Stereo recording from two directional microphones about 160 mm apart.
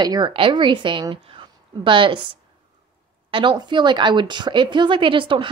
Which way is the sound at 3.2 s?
30° right (ahead or behind).